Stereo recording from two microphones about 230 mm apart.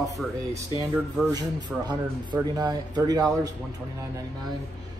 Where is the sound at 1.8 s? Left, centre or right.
Centre.